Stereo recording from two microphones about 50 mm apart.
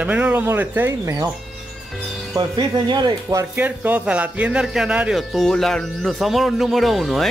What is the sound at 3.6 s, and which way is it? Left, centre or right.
Speech, right.